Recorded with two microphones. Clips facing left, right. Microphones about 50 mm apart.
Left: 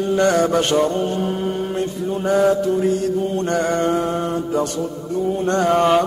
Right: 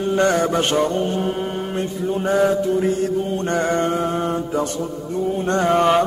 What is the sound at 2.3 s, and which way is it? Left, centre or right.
Mantra, right.